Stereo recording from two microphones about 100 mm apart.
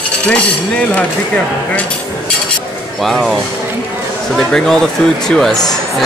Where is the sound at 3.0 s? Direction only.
Centre (ahead or behind).